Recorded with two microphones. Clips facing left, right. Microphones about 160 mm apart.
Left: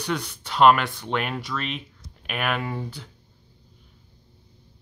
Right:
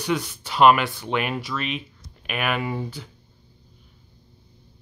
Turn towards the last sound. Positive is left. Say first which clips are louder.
# right 3 dB
turn(degrees=-5)  # may be behind; listen again after turning